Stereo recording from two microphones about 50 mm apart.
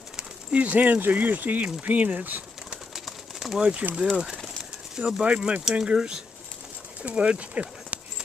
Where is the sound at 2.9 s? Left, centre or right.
Centre.